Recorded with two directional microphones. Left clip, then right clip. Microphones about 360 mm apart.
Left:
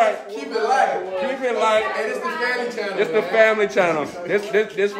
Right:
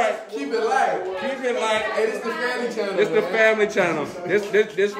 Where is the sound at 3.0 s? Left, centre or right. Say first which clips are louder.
Left 2 dB; centre.